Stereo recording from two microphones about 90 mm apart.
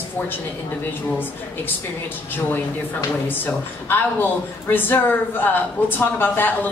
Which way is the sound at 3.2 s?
20° left (ahead or behind).